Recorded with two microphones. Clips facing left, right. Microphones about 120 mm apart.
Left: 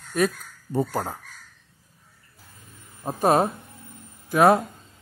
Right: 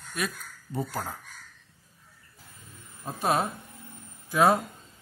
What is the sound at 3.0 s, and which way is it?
Speech, 45° left (ahead or behind).